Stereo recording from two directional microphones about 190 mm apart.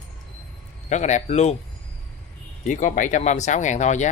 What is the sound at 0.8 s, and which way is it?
Speech, 40° left (ahead or behind).